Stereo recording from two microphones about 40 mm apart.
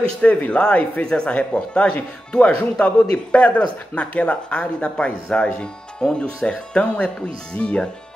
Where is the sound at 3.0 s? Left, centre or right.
Left.